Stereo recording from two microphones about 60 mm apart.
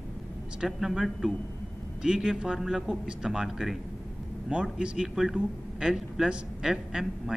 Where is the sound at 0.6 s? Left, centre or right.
Centre.